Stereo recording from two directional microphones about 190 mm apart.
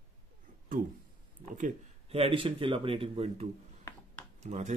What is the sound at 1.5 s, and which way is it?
Speech, 40° right (ahead or behind).